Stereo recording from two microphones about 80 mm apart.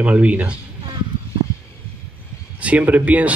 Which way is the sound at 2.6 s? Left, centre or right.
Centre.